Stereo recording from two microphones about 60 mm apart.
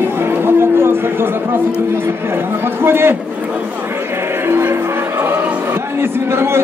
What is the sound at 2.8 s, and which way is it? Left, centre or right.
Speech, right.